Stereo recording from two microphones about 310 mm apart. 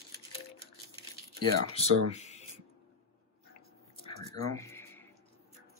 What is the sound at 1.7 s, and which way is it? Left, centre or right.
Speech, left.